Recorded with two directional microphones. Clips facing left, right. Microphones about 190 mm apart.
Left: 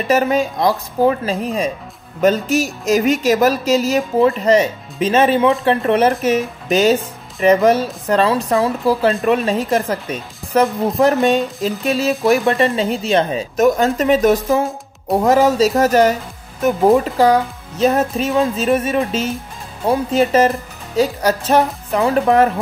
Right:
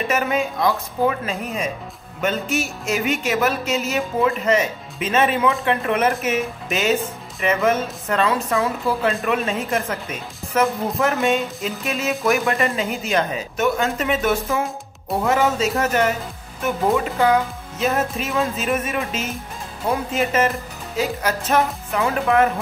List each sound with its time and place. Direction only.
0.1 s speech: 35° left (ahead or behind)